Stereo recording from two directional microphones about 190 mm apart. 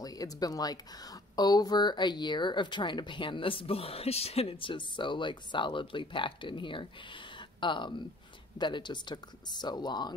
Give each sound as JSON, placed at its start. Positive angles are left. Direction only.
{"t": 0.0, "sound": "speech", "side_deg": 20}